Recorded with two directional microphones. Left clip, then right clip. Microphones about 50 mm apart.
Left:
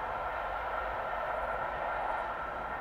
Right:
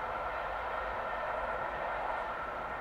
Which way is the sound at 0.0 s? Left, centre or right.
Right.